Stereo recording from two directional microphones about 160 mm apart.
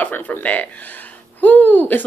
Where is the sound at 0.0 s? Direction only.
10° left (ahead or behind).